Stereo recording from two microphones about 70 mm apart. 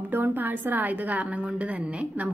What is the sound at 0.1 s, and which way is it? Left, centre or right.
A woman's voice, right.